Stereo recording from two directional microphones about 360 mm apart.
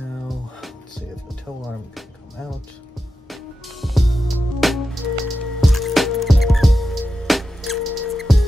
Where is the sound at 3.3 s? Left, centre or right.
Centre.